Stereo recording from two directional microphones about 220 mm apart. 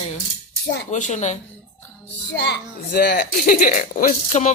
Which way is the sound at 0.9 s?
30° left (ahead or behind).